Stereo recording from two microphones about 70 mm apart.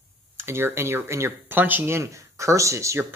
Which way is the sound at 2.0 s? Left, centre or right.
Right.